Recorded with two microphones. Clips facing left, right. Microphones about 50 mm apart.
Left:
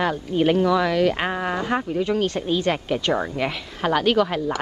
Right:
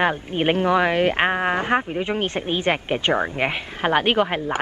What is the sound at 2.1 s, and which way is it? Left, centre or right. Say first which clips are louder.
Speech: left 2 dB; right.